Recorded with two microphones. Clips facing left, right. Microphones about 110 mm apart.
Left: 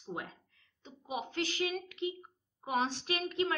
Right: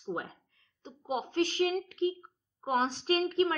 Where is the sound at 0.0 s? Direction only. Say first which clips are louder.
Right 5 dB; 35° right (ahead or behind).